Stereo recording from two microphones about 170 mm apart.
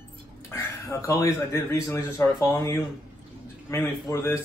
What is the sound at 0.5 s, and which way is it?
A man's voice, 15° left (ahead or behind).